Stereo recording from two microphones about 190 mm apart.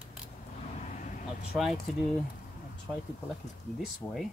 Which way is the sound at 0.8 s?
40° left (ahead or behind).